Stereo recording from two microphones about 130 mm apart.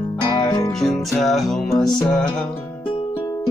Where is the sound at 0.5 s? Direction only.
30° left (ahead or behind).